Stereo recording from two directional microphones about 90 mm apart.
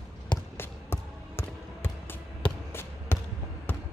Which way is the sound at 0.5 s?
25° left (ahead or behind).